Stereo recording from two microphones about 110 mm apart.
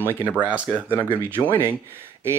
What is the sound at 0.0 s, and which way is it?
Speech, 20° right (ahead or behind).